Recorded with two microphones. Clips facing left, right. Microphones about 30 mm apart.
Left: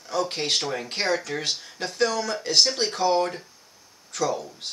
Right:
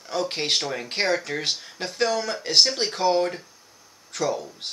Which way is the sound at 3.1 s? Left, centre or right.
Centre.